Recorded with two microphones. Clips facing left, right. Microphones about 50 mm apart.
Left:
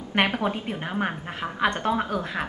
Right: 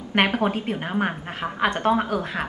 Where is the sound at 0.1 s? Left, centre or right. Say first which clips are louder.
Right 3 dB; right.